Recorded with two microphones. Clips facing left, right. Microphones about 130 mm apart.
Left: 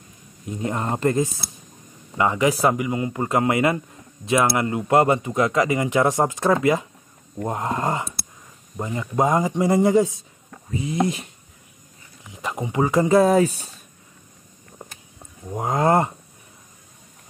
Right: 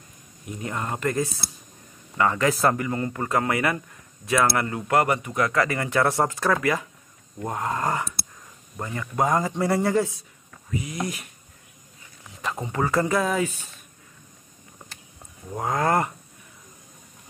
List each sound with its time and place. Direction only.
0.5 s a man's voice: 25° left (ahead or behind)
10.7 s speech: 30° left (ahead or behind)
12.3 s speech: 15° left (ahead or behind)
13.1 s speech: 35° left (ahead or behind)
15.5 s speech: 20° left (ahead or behind)